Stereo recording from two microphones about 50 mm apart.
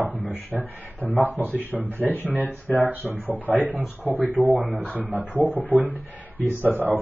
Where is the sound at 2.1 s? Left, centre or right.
Left.